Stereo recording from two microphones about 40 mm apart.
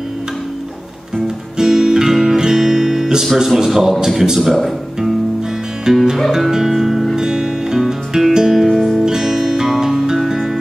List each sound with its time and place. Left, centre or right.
1.6 s guitar: centre
3.3 s a man's voice: centre
4.4 s speech: centre
5.9 s a man's voice: centre
6.5 s music: centre
8.6 s music: centre
9.0 s music: centre